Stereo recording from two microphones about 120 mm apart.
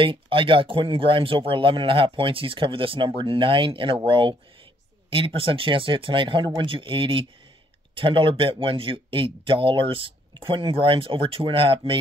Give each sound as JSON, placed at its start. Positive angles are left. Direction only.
{"t": 0.0, "sound": "speech", "side_deg": -45}